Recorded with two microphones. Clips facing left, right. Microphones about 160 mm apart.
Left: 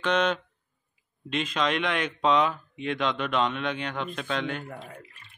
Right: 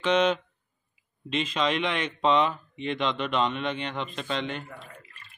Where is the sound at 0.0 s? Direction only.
Centre (ahead or behind).